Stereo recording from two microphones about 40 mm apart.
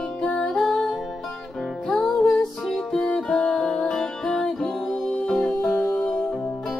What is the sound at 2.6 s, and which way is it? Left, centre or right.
Music, centre.